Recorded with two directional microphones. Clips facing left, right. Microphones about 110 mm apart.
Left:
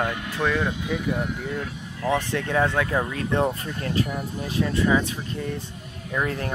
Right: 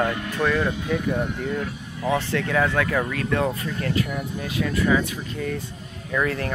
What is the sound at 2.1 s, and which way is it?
Speech, 20° left (ahead or behind).